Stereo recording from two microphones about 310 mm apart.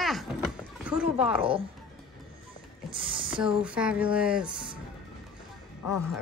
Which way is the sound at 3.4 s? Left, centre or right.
Centre.